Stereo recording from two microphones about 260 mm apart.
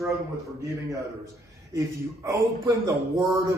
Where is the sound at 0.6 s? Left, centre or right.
Centre.